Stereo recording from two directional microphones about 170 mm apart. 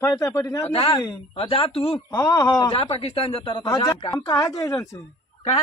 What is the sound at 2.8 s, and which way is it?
Speech, 35° left (ahead or behind).